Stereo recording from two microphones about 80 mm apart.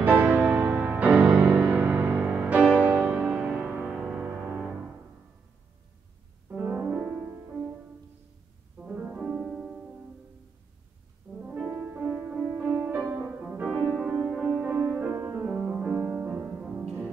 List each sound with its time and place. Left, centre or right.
0.0 s music: right; by 3.7 s centre
6.5 s music: centre
8.7 s piano: centre
9.2 s music: centre
11.4 s music: centre
13.7 s music: centre
14.7 s music: right
16.6 s music: centre